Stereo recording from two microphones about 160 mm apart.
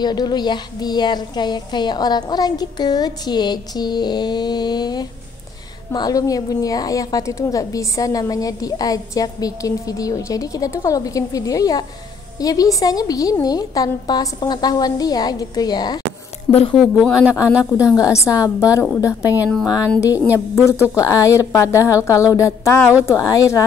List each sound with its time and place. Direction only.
0.0 s a woman's voice: 25° left (ahead or behind)
16.7 s a woman's voice: 5° right (ahead or behind)
17.9 s a woman's voice: 20° left (ahead or behind)
20.9 s a woman's voice: 20° left (ahead or behind)